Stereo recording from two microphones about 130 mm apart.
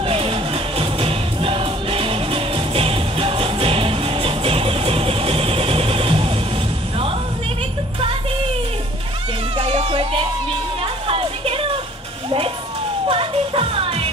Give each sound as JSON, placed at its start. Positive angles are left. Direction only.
{"t": 0.0, "sound": "music", "side_deg": -45}
{"t": 9.6, "sound": "music", "side_deg": -45}
{"t": 13.1, "sound": "music", "side_deg": -45}